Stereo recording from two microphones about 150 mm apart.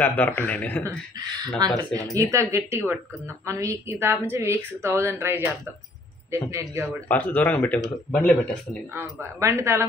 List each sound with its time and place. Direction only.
0.0 s speech: 15° left (ahead or behind)
0.8 s a woman's voice: 25° right (ahead or behind)
7.1 s speech: 10° left (ahead or behind)
8.9 s a woman's voice: 15° right (ahead or behind)